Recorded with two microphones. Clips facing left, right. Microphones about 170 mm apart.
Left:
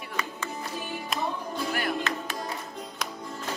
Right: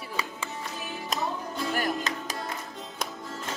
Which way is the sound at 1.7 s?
40° right (ahead or behind).